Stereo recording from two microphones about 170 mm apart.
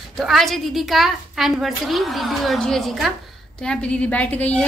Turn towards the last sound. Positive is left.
turn(degrees=10)  # may be behind; listen again after turning